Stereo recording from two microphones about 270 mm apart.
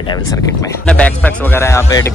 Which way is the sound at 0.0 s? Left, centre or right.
Centre.